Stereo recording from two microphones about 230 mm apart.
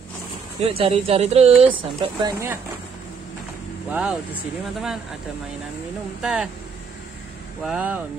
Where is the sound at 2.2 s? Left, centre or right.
Centre.